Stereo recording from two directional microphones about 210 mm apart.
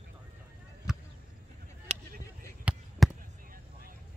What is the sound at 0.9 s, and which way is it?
Chop, 5° right (ahead or behind).